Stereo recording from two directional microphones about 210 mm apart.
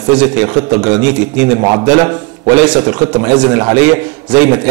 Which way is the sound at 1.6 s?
20° right (ahead or behind).